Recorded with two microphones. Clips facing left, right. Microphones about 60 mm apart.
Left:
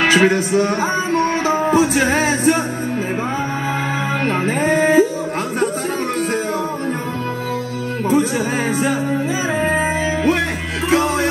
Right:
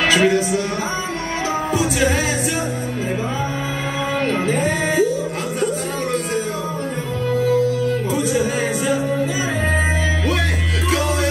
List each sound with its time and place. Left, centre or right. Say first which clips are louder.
0.1 s music: left 2 dB; left
1.7 s music: left 3 dB; left
4.3 s music: left 4 dB; left
8.1 s music: left 2 dB; left